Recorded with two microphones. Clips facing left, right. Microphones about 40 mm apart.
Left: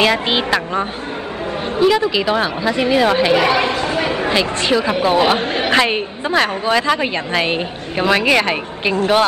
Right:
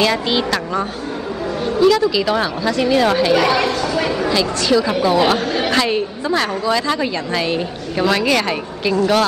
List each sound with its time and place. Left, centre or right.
0.0 s a woman's voice: left
3.8 s a sound: left
4.9 s a woman's voice: left